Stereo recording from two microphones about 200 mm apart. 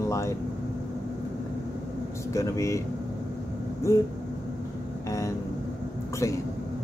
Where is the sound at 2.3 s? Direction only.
15° left (ahead or behind).